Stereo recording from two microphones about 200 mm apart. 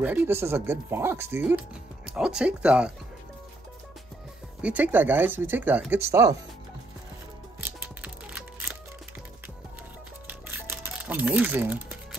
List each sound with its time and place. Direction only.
0.0 s speech: 10° right (ahead or behind)
4.6 s speech: 5° right (ahead or behind)
7.6 s music: 5° right (ahead or behind)
10.2 s music: 10° right (ahead or behind)